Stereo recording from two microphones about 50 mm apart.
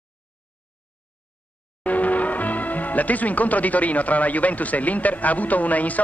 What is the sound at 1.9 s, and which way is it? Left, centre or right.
Speech, left.